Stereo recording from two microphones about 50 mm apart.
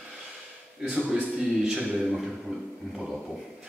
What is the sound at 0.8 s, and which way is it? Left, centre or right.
Speech, centre.